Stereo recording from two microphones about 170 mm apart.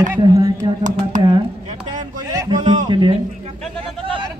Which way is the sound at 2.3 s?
25° right (ahead or behind).